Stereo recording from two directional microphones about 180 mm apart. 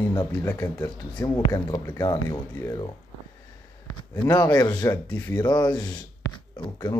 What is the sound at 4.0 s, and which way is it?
Speech, 20° left (ahead or behind).